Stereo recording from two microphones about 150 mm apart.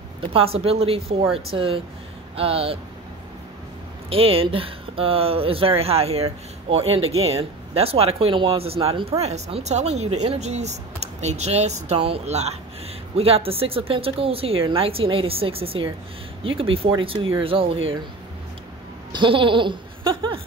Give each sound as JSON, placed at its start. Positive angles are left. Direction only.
{"t": 0.3, "sound": "speech", "side_deg": -40}
{"t": 4.1, "sound": "speech", "side_deg": -40}
{"t": 19.1, "sound": "laughter", "side_deg": -35}